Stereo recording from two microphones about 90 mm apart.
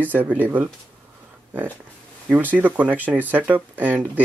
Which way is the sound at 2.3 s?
20° right (ahead or behind).